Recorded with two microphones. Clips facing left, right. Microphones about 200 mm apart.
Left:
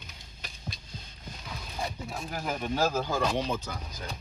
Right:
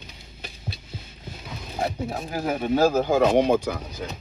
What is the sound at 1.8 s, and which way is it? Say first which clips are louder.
Speech: right 9 dB; 55° right (ahead or behind).